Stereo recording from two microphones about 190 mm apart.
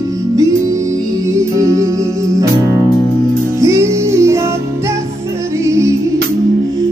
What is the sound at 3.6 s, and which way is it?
Music, 15° right (ahead or behind).